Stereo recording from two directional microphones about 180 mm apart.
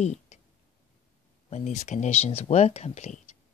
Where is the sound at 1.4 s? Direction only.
40° left (ahead or behind).